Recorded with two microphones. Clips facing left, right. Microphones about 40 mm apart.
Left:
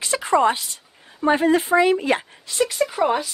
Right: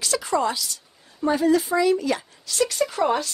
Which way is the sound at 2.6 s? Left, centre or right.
Centre.